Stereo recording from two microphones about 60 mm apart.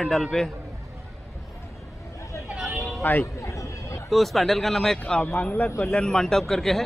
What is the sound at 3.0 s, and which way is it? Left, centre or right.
Speech, left.